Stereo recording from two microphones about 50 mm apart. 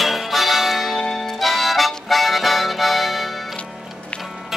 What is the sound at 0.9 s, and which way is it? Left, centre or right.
Music, centre.